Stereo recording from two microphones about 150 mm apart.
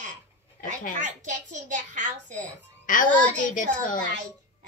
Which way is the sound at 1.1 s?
55° right (ahead or behind).